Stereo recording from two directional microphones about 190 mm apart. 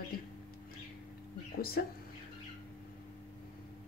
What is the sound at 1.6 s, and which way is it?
Speech, 55° left (ahead or behind).